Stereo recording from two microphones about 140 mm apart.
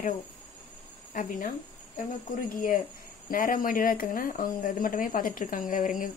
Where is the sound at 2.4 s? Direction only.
90° left; by 6.1 s 70° left (ahead or behind).